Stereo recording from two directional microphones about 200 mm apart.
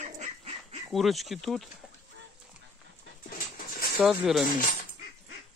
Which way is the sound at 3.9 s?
Centre (ahead or behind).